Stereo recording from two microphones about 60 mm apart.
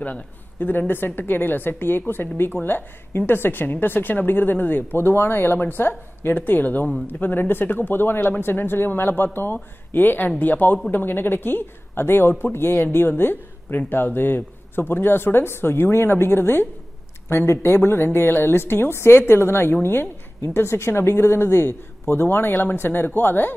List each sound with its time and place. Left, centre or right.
0.0 s a woman's voice: left